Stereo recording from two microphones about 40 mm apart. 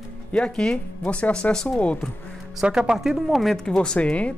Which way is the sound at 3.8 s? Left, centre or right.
Left.